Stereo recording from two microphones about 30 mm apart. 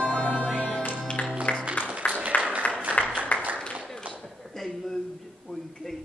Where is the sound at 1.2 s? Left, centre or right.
Left.